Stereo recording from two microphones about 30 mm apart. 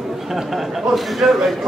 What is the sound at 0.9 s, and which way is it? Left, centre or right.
Speech, centre.